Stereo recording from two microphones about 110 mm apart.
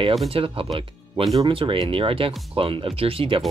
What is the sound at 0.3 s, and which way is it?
Speech, 55° right (ahead or behind).